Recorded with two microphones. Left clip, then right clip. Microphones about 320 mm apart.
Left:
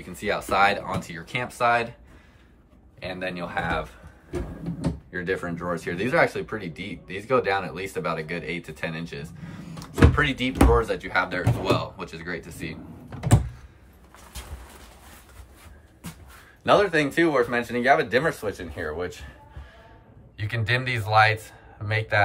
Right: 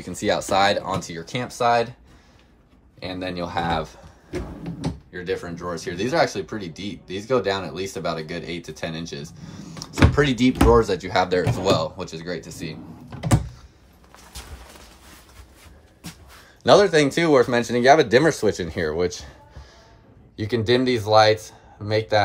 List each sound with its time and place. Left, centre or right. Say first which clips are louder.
0.1 s speech: right 4 dB; centre
3.0 s speech: right 2 dB; centre
5.1 s speech: even; centre
16.6 s speech: right 5 dB; centre
20.3 s speech: right 6 dB; centre